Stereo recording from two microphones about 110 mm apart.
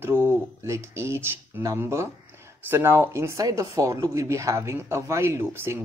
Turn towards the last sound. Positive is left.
turn(degrees=-25)  # may be behind; listen again after turning